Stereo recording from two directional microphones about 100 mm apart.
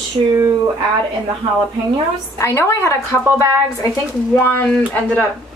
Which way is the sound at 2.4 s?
25° left (ahead or behind).